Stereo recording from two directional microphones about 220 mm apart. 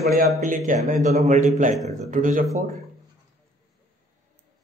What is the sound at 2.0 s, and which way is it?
Speech, 35° right (ahead or behind).